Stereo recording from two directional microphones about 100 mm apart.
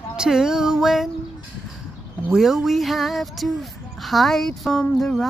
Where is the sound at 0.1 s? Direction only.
5° right (ahead or behind).